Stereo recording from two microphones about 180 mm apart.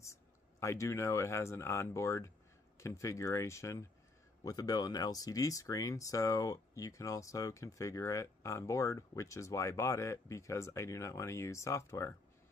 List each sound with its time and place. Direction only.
0.0 s speech: 15° left (ahead or behind)